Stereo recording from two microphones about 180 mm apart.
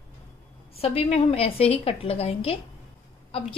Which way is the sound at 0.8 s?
35° left (ahead or behind).